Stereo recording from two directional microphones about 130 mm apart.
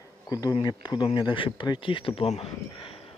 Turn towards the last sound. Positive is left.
turn(degrees=45)  # may be behind; listen again after turning